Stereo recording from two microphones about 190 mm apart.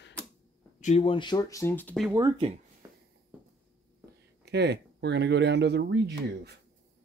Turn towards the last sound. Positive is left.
turn(degrees=-60)  # may be behind; listen again after turning